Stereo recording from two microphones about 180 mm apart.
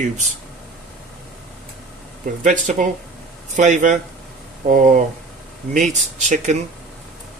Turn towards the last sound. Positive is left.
turn(degrees=-40)  # may be behind; listen again after turning